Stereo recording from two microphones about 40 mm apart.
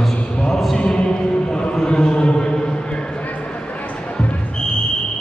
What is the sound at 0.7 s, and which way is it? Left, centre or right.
Music, left.